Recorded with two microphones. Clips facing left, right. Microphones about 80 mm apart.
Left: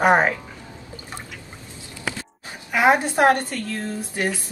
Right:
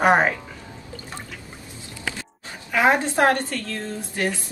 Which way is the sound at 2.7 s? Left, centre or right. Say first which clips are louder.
Left 1 dB; centre.